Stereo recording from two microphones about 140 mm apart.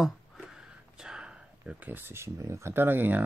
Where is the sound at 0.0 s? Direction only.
Centre (ahead or behind).